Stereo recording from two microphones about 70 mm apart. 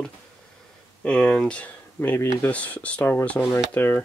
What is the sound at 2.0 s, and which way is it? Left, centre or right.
Speech, left.